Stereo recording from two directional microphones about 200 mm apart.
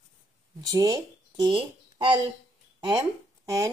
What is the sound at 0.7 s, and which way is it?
Speech, 20° right (ahead or behind).